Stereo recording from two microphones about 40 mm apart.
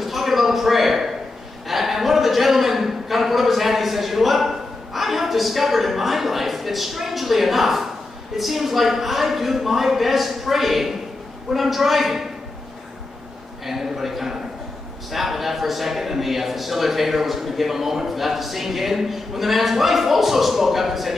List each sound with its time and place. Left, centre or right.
0.0 s a sound: centre
8.4 s a man's voice: centre
13.7 s a man's voice: centre